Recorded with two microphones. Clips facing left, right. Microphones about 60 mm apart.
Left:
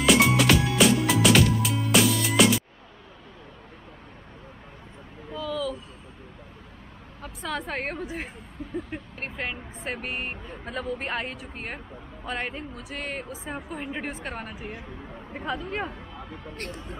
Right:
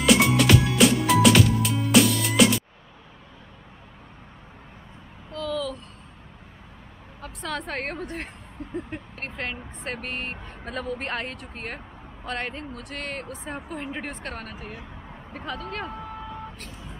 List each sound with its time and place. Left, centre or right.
0.0 s music: centre
5.3 s a sound: centre
7.2 s vehicle: centre
8.7 s speech: centre
16.5 s speech: left